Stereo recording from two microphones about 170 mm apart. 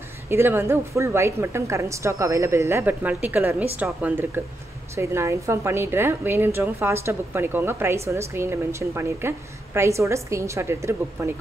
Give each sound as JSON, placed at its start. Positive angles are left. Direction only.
{"t": 0.3, "sound": "a woman's voice", "side_deg": -15}